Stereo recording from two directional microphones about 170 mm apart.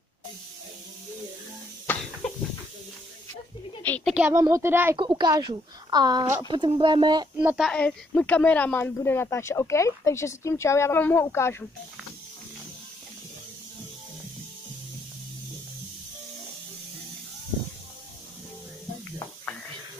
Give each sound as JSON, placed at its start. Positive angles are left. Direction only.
{"t": 1.9, "sound": "cough", "side_deg": 10}
{"t": 3.8, "sound": "a sound", "side_deg": 10}
{"t": 4.1, "sound": "speech", "side_deg": -10}
{"t": 4.9, "sound": "a woman's voice", "side_deg": -25}
{"t": 7.3, "sound": "a woman's voice", "side_deg": -5}